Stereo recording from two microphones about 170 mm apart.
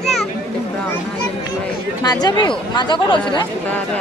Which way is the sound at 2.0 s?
25° left (ahead or behind).